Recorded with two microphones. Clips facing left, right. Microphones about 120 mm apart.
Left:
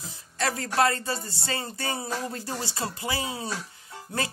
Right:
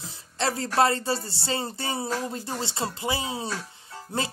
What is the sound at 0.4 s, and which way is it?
Speech, 25° right (ahead or behind).